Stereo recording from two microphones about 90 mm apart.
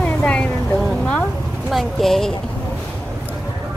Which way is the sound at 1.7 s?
Centre (ahead or behind).